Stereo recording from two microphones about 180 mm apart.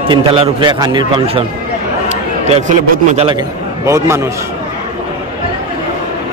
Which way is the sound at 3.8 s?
15° right (ahead or behind).